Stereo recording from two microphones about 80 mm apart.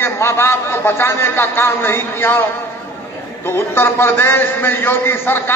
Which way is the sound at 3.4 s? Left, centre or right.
Left.